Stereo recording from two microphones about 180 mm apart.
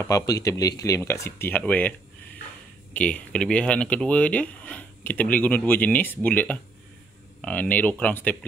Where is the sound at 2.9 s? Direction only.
5° left (ahead or behind).